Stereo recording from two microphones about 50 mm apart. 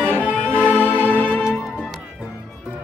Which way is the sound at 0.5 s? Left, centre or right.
Right.